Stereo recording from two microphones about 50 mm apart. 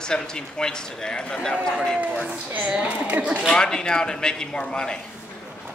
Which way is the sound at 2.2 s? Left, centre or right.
Right.